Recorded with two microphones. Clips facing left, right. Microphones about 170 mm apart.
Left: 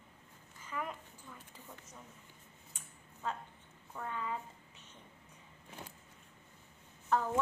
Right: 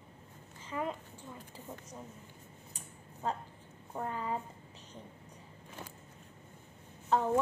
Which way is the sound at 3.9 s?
35° right (ahead or behind).